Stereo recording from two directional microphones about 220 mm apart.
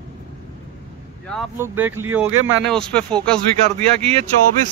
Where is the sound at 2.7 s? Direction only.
5° left (ahead or behind).